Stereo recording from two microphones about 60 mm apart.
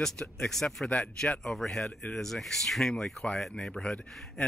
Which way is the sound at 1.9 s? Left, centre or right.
Left.